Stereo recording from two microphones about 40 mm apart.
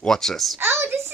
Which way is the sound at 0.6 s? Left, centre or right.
Right.